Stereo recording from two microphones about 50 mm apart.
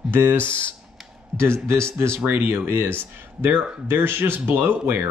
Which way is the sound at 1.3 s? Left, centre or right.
Right.